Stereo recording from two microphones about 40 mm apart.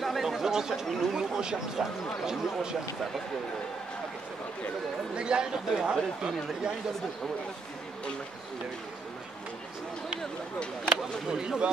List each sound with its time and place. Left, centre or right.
0.0 s speech: centre
5.1 s a man's voice: right
10.9 s a sound: right